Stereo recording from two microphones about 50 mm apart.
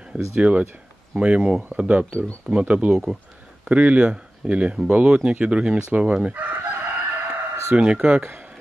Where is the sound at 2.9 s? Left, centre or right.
Centre.